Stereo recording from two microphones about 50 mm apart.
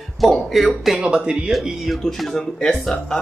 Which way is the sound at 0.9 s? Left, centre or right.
Centre.